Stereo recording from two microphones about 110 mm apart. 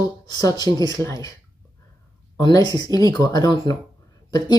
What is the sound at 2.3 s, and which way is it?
Speech, 35° left (ahead or behind).